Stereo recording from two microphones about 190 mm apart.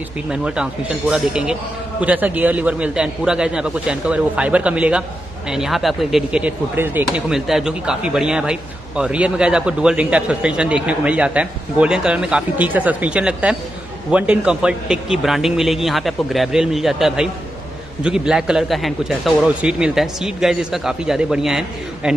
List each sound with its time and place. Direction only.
0.3 s speech: 5° right (ahead or behind)